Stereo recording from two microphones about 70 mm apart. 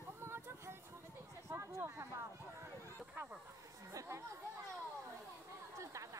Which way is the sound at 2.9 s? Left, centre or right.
Right.